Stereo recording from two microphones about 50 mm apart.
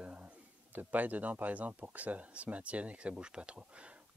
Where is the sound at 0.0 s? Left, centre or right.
Right.